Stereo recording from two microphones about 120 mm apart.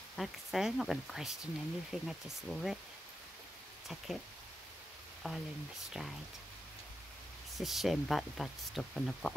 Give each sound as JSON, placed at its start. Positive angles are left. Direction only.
{"t": 0.1, "sound": "speech", "side_deg": 0}
{"t": 5.2, "sound": "speech", "side_deg": 5}
{"t": 7.5, "sound": "speech", "side_deg": 0}